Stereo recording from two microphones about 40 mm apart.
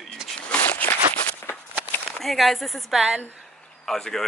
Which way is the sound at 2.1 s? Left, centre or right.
Centre.